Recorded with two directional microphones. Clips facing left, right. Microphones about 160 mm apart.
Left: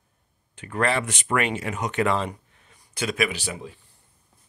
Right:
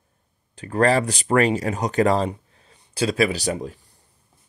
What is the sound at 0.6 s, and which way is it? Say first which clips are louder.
Speech: right 6 dB; 35° right (ahead or behind).